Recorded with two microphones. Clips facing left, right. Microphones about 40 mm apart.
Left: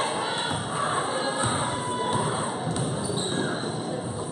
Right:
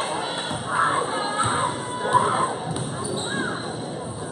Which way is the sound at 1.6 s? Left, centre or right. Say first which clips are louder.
Right 2 dB; centre.